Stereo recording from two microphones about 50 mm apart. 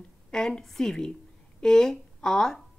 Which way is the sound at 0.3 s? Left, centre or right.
Centre.